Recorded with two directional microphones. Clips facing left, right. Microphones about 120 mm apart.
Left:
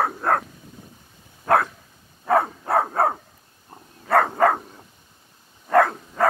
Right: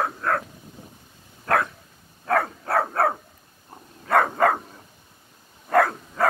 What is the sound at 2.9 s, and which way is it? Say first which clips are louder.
Dog: left 1 dB; 10° left (ahead or behind).